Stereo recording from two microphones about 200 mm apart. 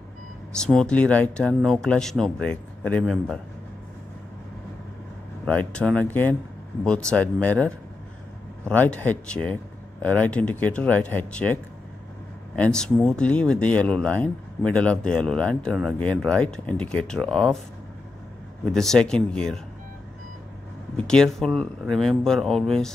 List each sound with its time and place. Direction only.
0.6 s speech: 5° left (ahead or behind)
5.4 s speech: 5° left (ahead or behind)
18.7 s speech: centre (ahead or behind)
20.9 s speech: 5° left (ahead or behind)